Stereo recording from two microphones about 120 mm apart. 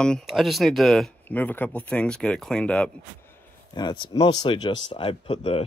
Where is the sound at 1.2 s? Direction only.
15° left (ahead or behind).